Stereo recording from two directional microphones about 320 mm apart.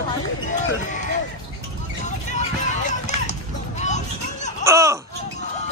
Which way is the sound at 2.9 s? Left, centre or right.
Left.